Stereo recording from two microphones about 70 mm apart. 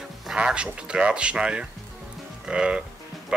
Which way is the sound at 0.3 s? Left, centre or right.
Centre.